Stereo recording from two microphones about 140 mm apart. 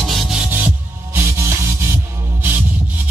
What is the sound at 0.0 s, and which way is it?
Music, centre (ahead or behind).